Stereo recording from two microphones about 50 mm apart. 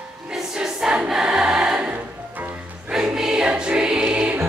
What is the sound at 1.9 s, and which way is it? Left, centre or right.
Music, right.